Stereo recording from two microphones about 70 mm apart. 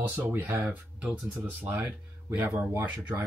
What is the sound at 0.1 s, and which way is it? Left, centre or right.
Speech, right.